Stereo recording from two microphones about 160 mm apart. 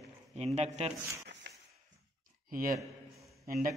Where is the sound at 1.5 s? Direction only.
90° right.